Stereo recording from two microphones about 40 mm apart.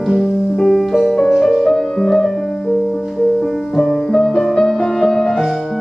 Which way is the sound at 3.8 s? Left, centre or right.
Centre.